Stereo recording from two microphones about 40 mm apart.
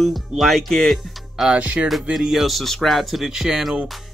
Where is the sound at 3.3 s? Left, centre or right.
Centre.